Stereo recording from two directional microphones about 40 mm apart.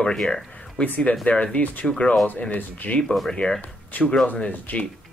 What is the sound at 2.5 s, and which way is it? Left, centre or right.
Speech, left.